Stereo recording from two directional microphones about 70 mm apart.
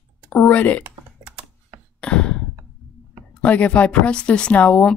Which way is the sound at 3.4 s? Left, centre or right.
Centre.